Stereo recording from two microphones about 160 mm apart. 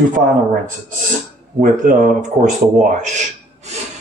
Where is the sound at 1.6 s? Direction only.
55° right (ahead or behind).